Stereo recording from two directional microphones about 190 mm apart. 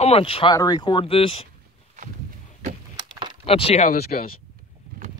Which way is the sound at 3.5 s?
30° left (ahead or behind).